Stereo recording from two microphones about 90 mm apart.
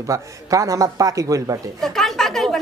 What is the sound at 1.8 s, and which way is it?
Speech, 5° left (ahead or behind).